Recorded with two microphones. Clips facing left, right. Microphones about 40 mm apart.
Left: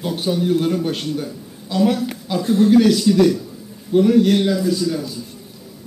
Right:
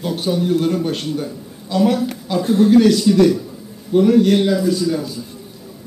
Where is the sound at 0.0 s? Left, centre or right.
Centre.